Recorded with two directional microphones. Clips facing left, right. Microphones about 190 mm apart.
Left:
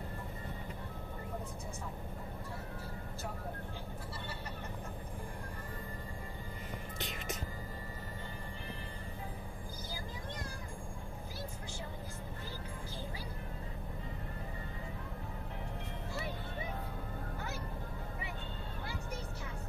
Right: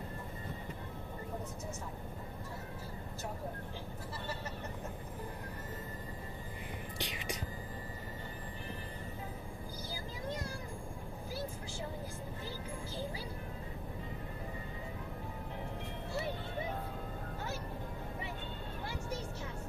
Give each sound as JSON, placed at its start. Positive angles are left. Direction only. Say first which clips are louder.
{"t": 7.0, "sound": "whispering", "louder": "right 1 dB", "side_deg": -15}